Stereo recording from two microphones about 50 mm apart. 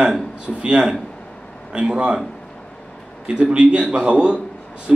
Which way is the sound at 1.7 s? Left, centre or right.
Centre.